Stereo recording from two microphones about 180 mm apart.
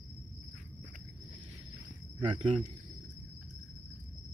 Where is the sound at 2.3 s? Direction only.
30° right (ahead or behind).